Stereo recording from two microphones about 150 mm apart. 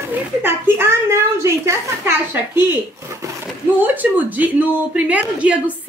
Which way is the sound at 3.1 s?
15° right (ahead or behind).